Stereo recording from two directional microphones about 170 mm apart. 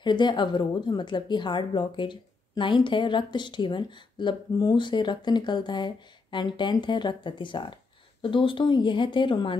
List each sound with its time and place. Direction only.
0.0 s a woman's voice: 25° left (ahead or behind)